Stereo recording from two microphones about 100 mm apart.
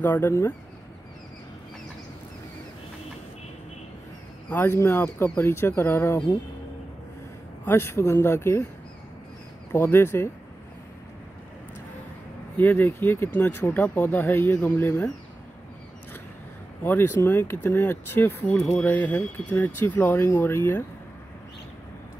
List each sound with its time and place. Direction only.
0.0 s speech: 20° left (ahead or behind)
4.5 s speech: 20° left (ahead or behind)
7.6 s speech: 25° left (ahead or behind)
9.7 s speech: 20° left (ahead or behind)
12.5 s speech: 20° left (ahead or behind)
16.8 s speech: 20° left (ahead or behind)